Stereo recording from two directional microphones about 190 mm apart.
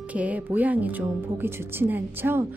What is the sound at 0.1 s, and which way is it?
A woman's voice, 5° right (ahead or behind).